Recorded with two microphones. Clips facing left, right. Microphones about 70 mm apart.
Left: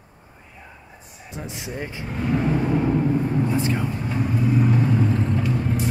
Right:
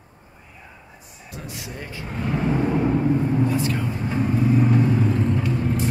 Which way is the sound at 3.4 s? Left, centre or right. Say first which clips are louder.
Even; left.